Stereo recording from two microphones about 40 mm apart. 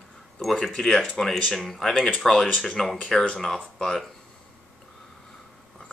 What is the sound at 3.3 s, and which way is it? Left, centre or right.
Speech, centre.